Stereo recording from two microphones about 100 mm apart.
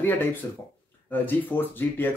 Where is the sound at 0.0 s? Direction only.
20° left (ahead or behind).